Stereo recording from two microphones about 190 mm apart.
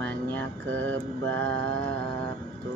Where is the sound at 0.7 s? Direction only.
90° right.